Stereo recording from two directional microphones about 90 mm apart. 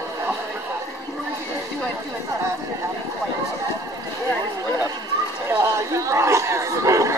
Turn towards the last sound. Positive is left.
turn(degrees=-35)  # may be behind; listen again after turning